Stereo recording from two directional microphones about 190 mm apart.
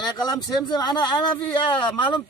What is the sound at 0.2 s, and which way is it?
Speech, 20° left (ahead or behind).